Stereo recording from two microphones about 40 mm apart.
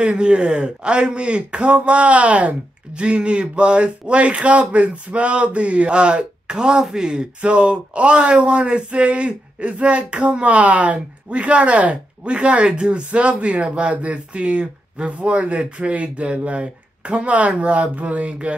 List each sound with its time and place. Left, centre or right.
0.0 s speech: right